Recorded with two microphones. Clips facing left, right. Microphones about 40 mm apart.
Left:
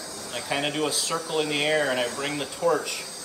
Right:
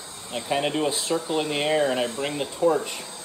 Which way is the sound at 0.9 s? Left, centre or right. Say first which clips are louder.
Right 3 dB; right.